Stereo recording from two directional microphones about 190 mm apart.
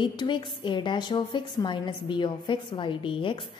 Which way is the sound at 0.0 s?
25° left (ahead or behind).